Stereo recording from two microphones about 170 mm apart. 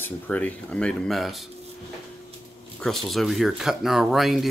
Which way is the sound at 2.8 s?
Centre (ahead or behind).